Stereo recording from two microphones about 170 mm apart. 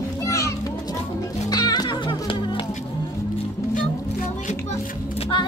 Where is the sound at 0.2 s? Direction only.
15° left (ahead or behind).